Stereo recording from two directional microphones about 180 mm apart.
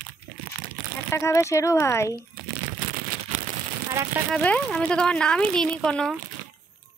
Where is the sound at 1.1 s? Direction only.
15° left (ahead or behind).